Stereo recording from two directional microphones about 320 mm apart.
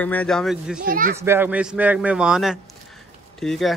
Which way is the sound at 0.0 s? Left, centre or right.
Centre.